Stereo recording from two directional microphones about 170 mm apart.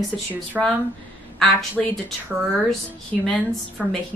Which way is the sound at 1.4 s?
5° left (ahead or behind).